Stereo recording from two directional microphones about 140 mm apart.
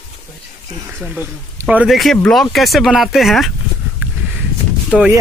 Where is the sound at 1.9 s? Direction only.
Centre (ahead or behind).